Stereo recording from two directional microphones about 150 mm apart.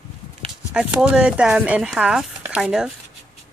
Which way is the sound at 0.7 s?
5° right (ahead or behind).